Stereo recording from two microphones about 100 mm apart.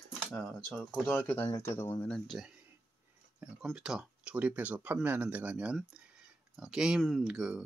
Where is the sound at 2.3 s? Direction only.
5° right (ahead or behind).